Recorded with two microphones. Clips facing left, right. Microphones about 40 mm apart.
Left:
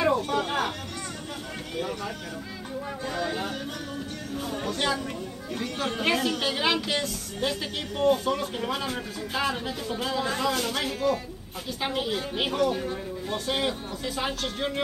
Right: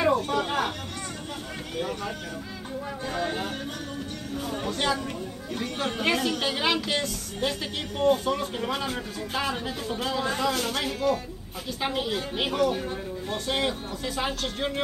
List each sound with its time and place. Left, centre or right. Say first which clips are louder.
0.3 s chatter: even; centre
1.8 s vehicle: right 1 dB; centre
3.1 s speech: right 1 dB; centre
4.4 s speech: even; centre
5.5 s speech: even; centre
5.9 s speech: even; centre